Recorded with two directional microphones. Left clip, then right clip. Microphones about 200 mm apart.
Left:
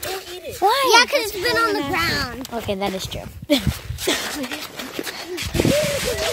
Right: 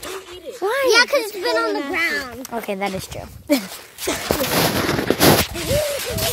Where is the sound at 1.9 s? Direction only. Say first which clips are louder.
Even; 20° left (ahead or behind).